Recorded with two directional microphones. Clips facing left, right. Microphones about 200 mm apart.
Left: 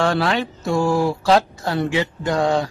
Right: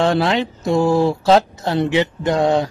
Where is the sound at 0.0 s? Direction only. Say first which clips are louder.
Right 3 dB; 20° right (ahead or behind).